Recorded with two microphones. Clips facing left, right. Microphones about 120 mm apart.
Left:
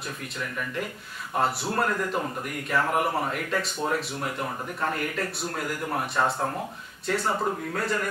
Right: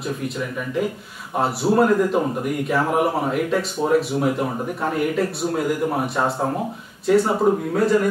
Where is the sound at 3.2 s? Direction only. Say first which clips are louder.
Right 7 dB; 5° right (ahead or behind).